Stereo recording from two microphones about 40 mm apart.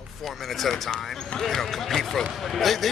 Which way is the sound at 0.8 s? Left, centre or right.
Centre.